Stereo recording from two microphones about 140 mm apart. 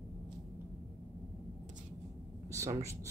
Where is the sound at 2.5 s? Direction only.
20° right (ahead or behind).